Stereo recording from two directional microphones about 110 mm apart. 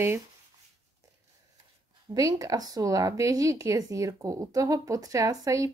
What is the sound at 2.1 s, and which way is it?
Speech, 30° right (ahead or behind).